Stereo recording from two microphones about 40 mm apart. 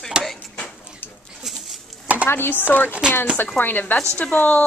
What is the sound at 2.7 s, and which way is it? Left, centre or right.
Chopping, left.